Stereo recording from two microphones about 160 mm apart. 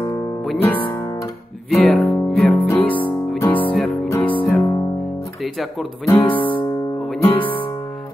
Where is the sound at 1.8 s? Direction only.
10° left (ahead or behind).